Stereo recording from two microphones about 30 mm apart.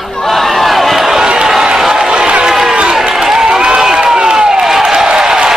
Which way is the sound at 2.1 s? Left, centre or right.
Right.